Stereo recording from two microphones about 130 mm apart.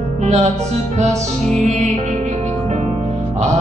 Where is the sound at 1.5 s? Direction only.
60° right (ahead or behind).